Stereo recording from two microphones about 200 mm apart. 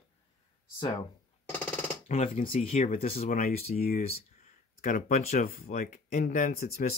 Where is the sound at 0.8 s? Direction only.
25° left (ahead or behind).